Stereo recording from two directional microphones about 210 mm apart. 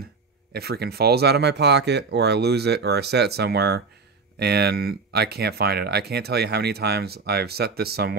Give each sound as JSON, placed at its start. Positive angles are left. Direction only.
{"t": 0.5, "sound": "speech", "side_deg": -50}